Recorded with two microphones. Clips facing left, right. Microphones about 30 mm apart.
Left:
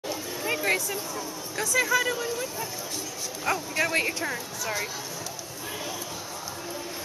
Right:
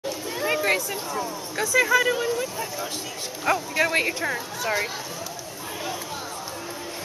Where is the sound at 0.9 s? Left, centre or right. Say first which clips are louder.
Right 4 dB; right.